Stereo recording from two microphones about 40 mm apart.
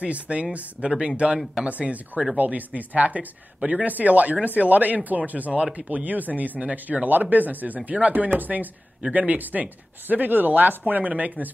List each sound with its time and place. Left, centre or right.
0.0 s speech: right
5.5 s speech: right
5.9 s speech: right